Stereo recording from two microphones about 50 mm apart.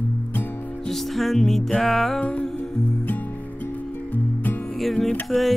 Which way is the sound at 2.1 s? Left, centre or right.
Left.